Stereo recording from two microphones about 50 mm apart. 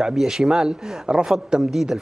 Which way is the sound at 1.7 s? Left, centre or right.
Centre.